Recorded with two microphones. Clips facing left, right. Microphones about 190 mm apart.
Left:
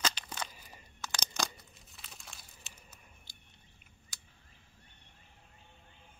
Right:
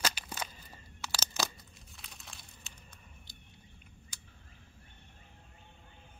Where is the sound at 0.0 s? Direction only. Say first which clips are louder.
Even; 10° right (ahead or behind).